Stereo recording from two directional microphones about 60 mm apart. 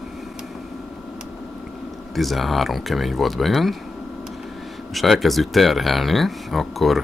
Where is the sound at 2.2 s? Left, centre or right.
Centre.